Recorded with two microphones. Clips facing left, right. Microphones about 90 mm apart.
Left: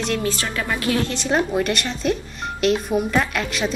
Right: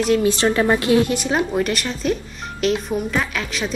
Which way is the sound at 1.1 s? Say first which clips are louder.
Right 1 dB; 5° right (ahead or behind).